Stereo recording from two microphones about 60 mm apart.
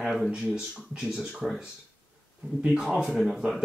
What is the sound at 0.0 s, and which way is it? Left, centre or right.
Speech, centre.